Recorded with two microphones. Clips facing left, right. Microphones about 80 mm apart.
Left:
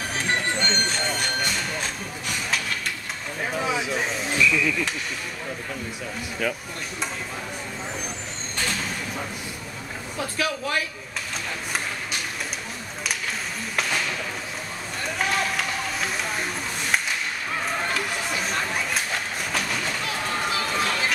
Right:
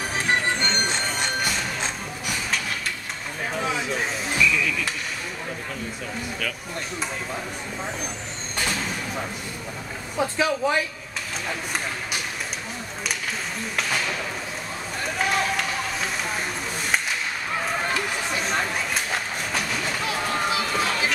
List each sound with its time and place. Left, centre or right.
0.1 s music: centre
3.5 s speech: centre
10.1 s speech: centre
15.1 s a sound: centre
17.9 s a sound: centre
20.7 s music: centre